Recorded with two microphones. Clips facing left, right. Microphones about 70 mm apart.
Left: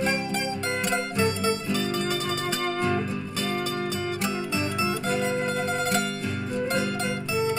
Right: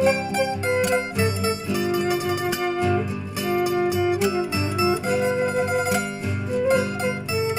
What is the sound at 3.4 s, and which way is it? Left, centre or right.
Music, centre.